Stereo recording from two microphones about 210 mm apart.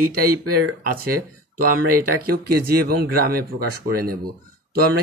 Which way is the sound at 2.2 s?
45° right (ahead or behind).